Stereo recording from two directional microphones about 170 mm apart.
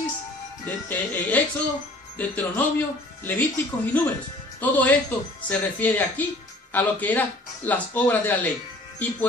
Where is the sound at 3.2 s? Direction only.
10° left (ahead or behind).